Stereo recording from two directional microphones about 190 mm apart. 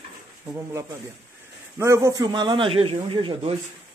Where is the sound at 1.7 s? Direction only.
15° right (ahead or behind).